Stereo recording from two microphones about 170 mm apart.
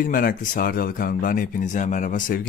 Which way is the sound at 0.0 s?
55° left (ahead or behind).